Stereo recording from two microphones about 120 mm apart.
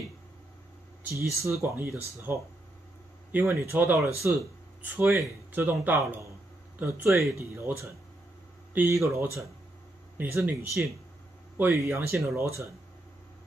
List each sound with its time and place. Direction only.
1.0 s speech: 25° right (ahead or behind)
3.3 s speech: 20° right (ahead or behind)